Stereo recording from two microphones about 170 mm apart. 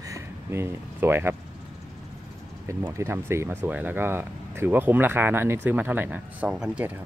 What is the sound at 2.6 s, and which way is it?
Speech, 15° right (ahead or behind).